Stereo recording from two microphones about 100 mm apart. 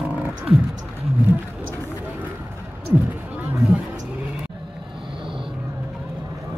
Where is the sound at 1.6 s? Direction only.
20° right (ahead or behind).